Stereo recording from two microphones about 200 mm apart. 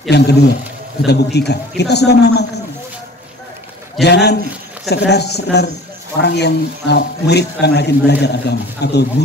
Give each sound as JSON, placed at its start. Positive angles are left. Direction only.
{"t": 0.1, "sound": "a man's voice", "side_deg": 55}
{"t": 4.0, "sound": "a man's voice", "side_deg": 55}